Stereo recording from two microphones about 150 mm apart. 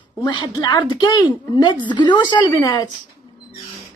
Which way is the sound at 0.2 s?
30° left (ahead or behind).